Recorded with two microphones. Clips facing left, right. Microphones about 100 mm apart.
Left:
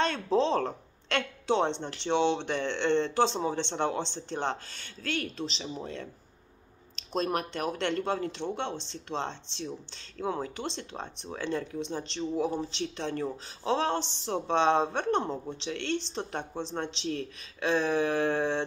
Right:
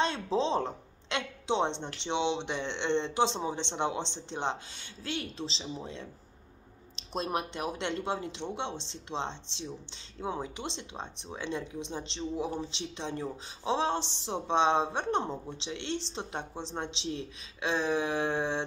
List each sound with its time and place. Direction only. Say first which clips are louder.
0.0 s a woman's voice: left 3 dB; 20° right (ahead or behind)
7.0 s speech: left 3 dB; 20° right (ahead or behind)